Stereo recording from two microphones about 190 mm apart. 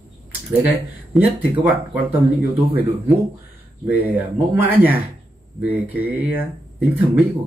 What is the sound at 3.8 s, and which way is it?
Speech, 10° right (ahead or behind).